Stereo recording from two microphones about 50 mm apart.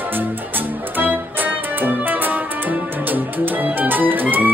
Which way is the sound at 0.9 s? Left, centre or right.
Right.